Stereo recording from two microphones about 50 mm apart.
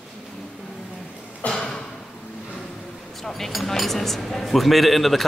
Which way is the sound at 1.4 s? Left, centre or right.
Left.